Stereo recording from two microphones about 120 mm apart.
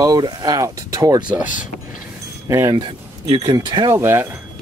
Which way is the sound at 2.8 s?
45° right (ahead or behind).